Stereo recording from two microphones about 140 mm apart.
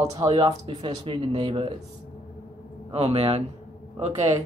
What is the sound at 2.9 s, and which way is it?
Speech, 45° right (ahead or behind).